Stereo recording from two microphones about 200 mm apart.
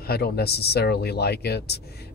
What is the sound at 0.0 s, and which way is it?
Speech, 50° left (ahead or behind).